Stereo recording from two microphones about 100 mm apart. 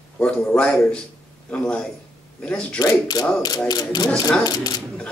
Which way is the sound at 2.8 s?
40° left (ahead or behind).